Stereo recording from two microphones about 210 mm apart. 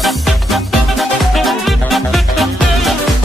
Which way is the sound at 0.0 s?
Centre (ahead or behind).